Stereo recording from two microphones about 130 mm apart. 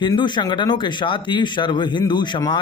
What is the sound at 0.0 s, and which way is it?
A man's voice, 35° left (ahead or behind).